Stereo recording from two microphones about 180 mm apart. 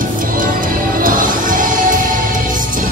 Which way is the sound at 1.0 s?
50° right (ahead or behind).